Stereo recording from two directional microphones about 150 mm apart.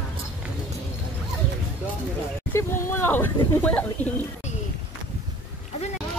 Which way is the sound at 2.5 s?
20° left (ahead or behind).